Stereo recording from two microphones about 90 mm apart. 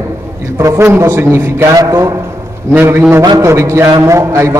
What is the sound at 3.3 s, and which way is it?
A man's voice, 35° right (ahead or behind).